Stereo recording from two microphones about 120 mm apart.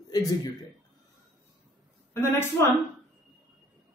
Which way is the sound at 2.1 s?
20° left (ahead or behind).